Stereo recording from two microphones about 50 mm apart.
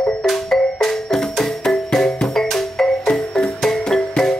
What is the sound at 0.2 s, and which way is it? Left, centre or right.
Music, centre.